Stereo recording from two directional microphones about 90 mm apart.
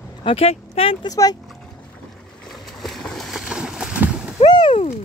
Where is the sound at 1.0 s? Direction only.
45° left (ahead or behind).